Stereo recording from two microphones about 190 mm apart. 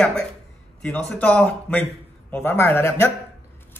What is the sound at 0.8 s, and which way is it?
Speech, 5° left (ahead or behind).